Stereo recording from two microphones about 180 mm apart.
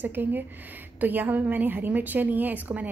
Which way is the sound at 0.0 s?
10° right (ahead or behind).